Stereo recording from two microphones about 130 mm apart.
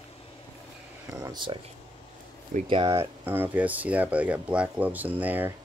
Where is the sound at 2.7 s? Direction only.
40° right (ahead or behind).